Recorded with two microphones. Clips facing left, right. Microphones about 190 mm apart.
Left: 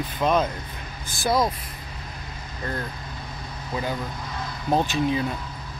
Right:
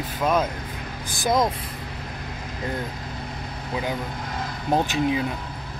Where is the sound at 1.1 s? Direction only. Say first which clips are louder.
Right 1 dB; 15° right (ahead or behind).